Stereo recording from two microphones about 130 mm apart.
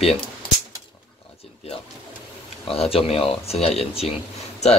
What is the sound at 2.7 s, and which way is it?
Speech, 50° left (ahead or behind).